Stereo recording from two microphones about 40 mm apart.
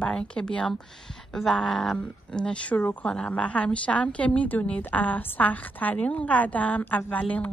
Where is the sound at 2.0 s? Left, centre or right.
Left.